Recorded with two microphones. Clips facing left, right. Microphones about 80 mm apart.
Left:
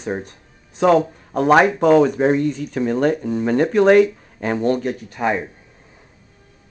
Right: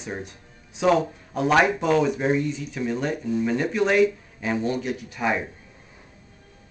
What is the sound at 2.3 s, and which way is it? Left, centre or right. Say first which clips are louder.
Speech: left 6 dB; left.